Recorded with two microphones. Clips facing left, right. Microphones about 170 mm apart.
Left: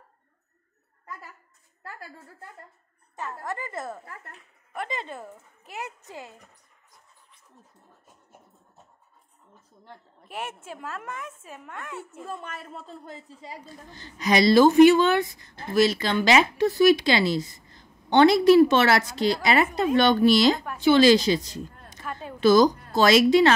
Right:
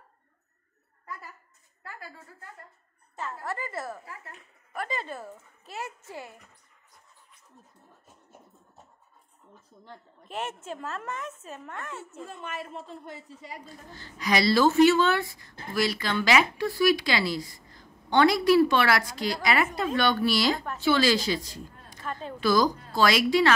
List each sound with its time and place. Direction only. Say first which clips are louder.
3.2 s speech: left 1 dB; 15° left (ahead or behind)
10.2 s a woman's voice: right 1 dB; 10° left (ahead or behind)
12.8 s speech: even; 30° left (ahead or behind)
13.9 s speech: left 4 dB; 20° left (ahead or behind)
22.0 s speech: even; 10° left (ahead or behind)
22.4 s speech: left 6 dB; 20° left (ahead or behind)